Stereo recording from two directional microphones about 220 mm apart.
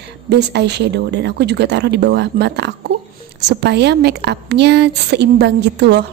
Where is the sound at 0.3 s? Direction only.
50° right (ahead or behind).